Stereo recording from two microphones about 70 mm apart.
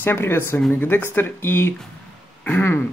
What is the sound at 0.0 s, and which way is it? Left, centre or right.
Speech, left.